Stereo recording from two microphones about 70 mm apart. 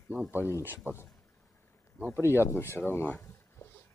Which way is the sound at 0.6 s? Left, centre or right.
Right.